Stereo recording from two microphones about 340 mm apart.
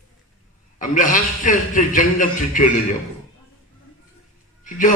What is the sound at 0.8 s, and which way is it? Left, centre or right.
A man's voice, left.